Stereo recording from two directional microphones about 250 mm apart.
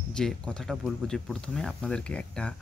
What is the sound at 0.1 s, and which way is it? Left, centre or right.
Speech, centre.